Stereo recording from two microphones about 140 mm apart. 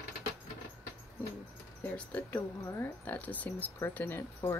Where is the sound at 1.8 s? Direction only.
10° left (ahead or behind).